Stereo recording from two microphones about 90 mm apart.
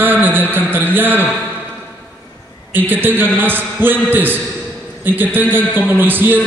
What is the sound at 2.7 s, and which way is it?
A man's voice, 20° right (ahead or behind).